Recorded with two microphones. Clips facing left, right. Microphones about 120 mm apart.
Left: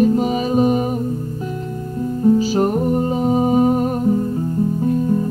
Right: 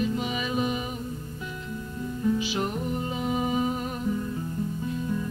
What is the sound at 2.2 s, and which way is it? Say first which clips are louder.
Music: left 12 dB; 40° left (ahead or behind).